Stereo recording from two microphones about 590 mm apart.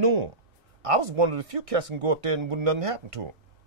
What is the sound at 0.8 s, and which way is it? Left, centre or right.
A man's voice, right.